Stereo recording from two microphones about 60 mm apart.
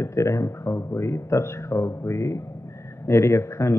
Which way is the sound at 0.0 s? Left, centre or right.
Left.